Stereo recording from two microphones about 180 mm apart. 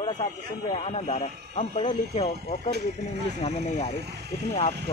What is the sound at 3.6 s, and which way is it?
Speech, 45° left (ahead or behind).